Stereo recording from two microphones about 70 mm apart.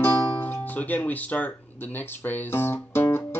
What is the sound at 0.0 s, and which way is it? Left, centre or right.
Music, left.